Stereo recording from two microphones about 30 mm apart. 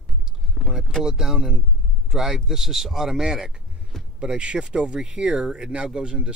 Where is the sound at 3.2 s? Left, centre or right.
Right.